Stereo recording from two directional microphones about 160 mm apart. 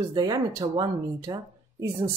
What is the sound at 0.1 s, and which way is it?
Speech, 25° right (ahead or behind).